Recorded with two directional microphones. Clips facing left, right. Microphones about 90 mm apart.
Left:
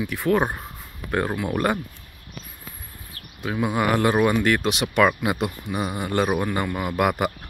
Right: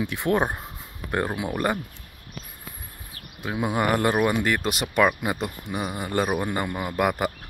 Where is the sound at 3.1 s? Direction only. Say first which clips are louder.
Left 2 dB; 10° right (ahead or behind).